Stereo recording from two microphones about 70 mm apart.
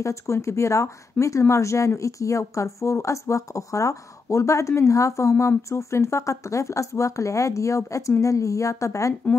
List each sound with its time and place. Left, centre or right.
0.0 s speech: left
1.1 s speech: left
1.5 s speech: left